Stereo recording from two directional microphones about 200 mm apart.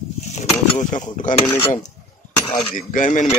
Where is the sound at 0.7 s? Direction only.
40° left (ahead or behind).